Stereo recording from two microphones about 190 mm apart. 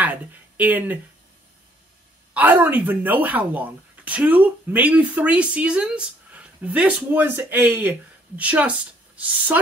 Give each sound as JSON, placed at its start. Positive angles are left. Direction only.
{"t": 0.0, "sound": "speech", "side_deg": -10}
{"t": 2.3, "sound": "speech", "side_deg": -10}